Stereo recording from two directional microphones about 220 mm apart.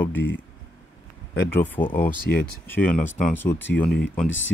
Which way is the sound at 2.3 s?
45° left (ahead or behind).